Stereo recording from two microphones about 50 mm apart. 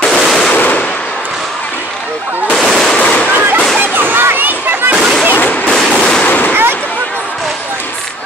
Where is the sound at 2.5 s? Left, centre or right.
Centre.